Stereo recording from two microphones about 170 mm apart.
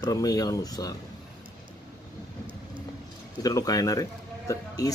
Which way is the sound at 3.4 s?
20° left (ahead or behind).